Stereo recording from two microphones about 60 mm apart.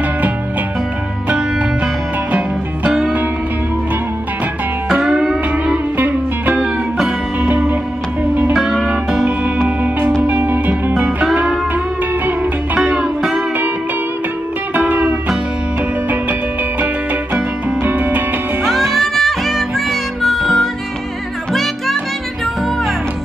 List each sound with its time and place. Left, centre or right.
2.9 s music: centre
5.0 s music: centre
5.9 s music: right
8.5 s music: centre
9.2 s music: right
12.7 s music: right
13.0 s music: centre
14.7 s music: right
17.8 s music: right
18.7 s music: centre